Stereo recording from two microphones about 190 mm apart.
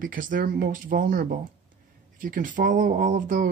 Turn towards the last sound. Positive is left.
turn(degrees=-40)  # may be behind; listen again after turning